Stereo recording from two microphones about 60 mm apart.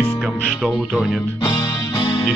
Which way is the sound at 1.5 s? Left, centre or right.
Left.